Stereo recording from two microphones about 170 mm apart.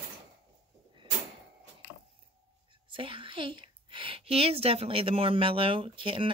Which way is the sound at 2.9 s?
30° right (ahead or behind).